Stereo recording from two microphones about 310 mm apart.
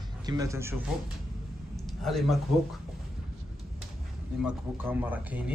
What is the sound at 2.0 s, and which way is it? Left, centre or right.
Speech, centre.